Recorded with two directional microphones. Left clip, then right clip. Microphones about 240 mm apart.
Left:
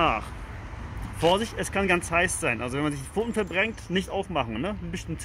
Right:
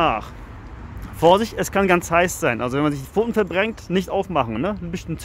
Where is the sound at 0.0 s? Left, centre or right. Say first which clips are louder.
Right 4 dB; centre.